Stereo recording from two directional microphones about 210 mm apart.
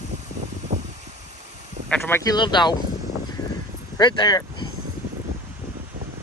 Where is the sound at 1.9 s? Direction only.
10° left (ahead or behind).